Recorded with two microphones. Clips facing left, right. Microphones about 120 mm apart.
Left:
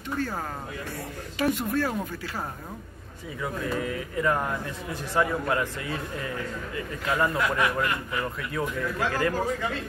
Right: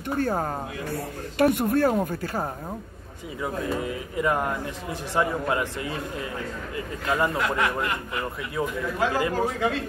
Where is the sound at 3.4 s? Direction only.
20° right (ahead or behind).